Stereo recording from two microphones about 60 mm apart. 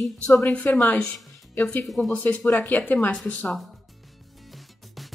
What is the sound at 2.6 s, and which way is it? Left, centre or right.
Speech, left.